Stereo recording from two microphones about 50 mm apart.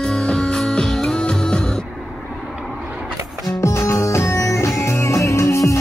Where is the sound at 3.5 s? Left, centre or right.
Left.